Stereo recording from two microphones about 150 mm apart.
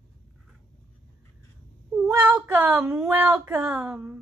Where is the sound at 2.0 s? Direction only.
10° right (ahead or behind).